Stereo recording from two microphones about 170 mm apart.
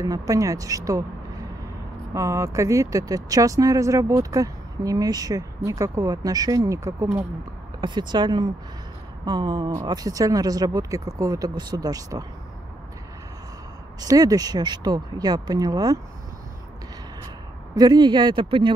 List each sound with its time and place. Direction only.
0.0 s speech: 20° right (ahead or behind)
2.1 s speech: 20° right (ahead or behind)
14.0 s speech: 20° right (ahead or behind)
17.7 s speech: 25° right (ahead or behind)